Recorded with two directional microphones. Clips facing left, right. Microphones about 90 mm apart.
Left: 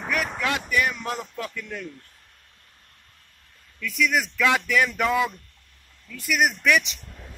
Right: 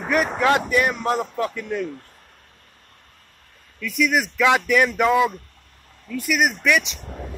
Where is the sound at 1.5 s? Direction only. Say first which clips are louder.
Right 8 dB; 20° right (ahead or behind).